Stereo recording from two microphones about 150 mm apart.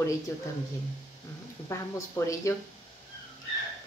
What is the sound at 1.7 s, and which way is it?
Speech, 20° left (ahead or behind).